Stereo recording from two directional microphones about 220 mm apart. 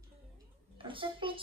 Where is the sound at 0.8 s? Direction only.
25° right (ahead or behind).